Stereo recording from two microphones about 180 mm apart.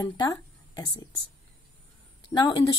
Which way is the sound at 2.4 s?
20° left (ahead or behind).